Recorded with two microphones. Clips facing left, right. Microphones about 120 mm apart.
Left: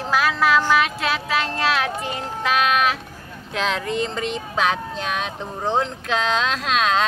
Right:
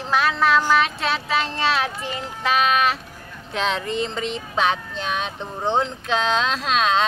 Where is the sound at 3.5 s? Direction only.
Centre (ahead or behind).